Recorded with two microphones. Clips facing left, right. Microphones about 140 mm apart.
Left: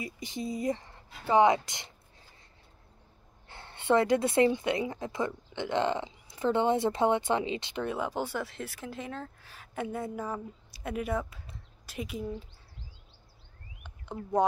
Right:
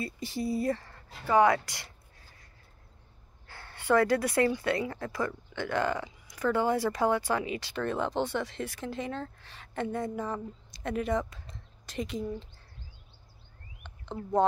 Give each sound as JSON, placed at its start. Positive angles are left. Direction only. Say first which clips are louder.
{"t": 0.0, "sound": "speech", "louder": "right 3 dB", "side_deg": 15}
{"t": 3.4, "sound": "speech", "louder": "left 1 dB", "side_deg": 25}